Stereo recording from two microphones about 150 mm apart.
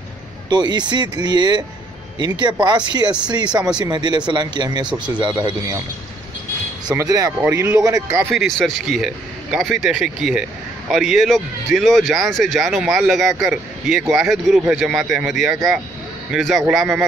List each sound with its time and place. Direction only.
0.5 s speech: 30° right (ahead or behind)
4.8 s speech: 5° right (ahead or behind)
5.2 s speech: 25° right (ahead or behind)
6.9 s speech: 25° right (ahead or behind)
8.3 s a man's voice: centre (ahead or behind)